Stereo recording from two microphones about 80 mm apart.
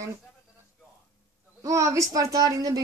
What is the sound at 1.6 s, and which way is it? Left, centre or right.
A woman's voice, right.